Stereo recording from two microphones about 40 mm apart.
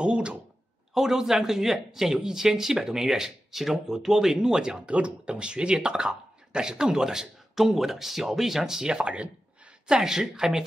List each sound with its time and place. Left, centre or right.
0.0 s a sound: right
0.9 s speech: centre
9.0 s speech: right
9.8 s speech: centre